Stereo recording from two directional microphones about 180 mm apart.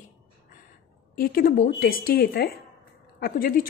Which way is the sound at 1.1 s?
55° left (ahead or behind).